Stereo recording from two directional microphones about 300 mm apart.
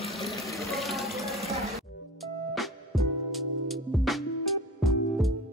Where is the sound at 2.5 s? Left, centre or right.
Centre.